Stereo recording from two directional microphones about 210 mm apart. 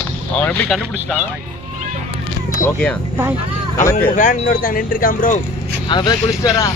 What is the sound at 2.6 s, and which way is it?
Speech, 5° left (ahead or behind).